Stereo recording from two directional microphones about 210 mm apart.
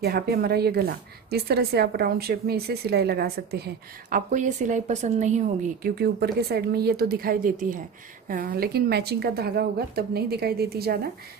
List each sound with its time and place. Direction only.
0.0 s a woman's voice: 50° right (ahead or behind)
4.3 s a woman's voice: 35° right (ahead or behind)